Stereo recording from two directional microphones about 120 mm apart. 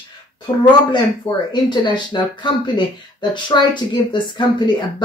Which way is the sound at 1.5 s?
40° left (ahead or behind).